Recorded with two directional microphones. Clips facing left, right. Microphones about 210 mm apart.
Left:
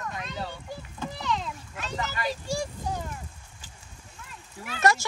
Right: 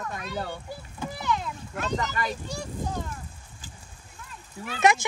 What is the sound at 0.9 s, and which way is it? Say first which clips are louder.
Children playing: right 2 dB; 10° right (ahead or behind).